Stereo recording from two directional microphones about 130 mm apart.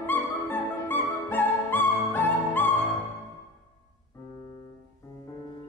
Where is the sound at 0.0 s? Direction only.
15° left (ahead or behind).